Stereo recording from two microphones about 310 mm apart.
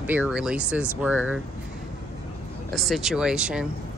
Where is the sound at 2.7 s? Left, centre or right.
Centre.